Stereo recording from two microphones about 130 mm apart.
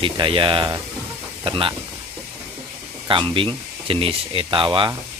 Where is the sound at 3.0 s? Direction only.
40° right (ahead or behind).